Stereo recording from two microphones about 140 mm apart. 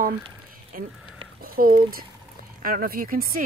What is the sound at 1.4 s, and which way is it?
Speech, 90° right.